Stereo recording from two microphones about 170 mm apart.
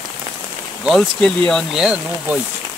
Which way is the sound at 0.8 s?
5° left (ahead or behind).